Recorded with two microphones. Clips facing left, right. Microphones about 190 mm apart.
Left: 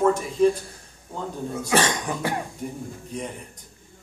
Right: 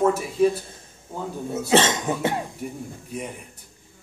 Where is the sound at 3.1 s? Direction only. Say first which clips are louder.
Even; 5° right (ahead or behind).